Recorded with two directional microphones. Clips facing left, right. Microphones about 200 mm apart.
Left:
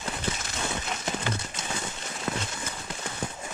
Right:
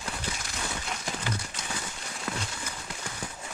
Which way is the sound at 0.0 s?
25° left (ahead or behind).